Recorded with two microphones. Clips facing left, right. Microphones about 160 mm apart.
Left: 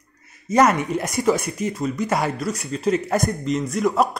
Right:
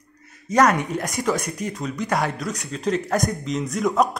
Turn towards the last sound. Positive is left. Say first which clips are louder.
# left 1 dB
turn(degrees=0)  # may be behind; listen again after turning